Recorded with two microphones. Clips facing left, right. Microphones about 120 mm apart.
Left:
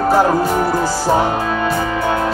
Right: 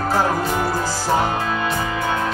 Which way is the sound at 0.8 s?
20° left (ahead or behind).